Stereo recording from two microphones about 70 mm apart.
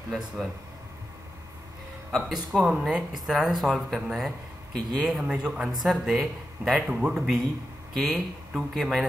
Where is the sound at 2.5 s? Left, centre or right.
Centre.